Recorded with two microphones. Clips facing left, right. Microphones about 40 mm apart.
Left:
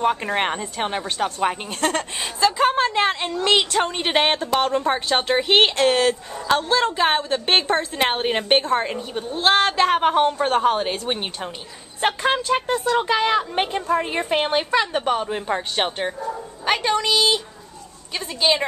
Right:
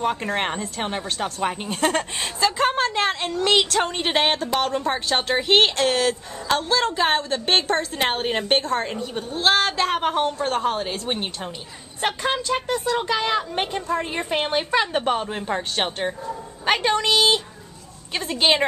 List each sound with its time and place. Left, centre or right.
0.0 s a woman's voice: centre
1.7 s a woman's voice: centre
2.6 s a woman's voice: centre
14.7 s a woman's voice: centre
16.6 s a woman's voice: centre